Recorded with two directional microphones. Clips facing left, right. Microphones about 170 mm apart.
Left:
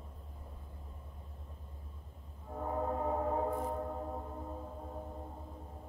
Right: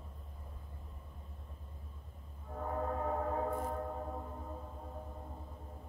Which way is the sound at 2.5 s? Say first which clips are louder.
Left 2 dB; 10° left (ahead or behind).